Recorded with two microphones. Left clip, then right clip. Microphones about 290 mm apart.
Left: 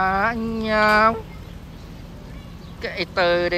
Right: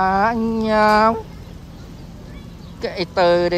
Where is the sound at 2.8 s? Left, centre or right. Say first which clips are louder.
Right 4 dB; centre.